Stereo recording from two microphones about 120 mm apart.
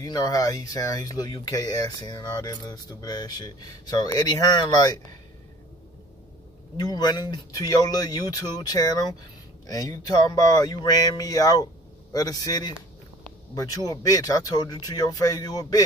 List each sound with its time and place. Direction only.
0.0 s speech: 30° left (ahead or behind)
6.8 s speech: 35° left (ahead or behind)